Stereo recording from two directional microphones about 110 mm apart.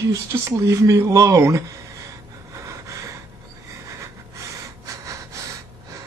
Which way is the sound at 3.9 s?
25° right (ahead or behind).